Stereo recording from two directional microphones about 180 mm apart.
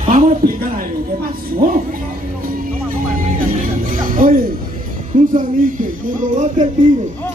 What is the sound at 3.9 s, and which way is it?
Music, 50° right (ahead or behind).